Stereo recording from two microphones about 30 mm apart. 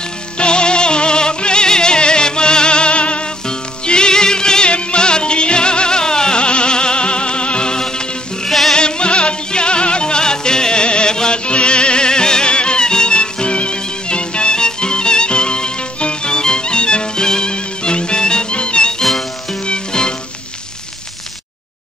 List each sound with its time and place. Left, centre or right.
0.4 s music: left
3.4 s music: left
8.5 s music: centre
8.7 s music: left
11.4 s music: left